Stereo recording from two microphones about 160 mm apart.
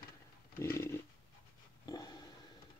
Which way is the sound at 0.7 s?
20° left (ahead or behind).